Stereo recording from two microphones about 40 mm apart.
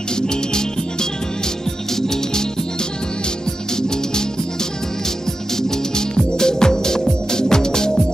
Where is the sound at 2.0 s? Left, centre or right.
Centre.